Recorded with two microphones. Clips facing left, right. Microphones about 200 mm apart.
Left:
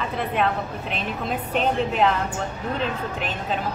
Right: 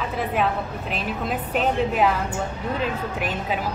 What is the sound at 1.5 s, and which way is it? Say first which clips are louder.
Speech: right 1 dB; 5° right (ahead or behind).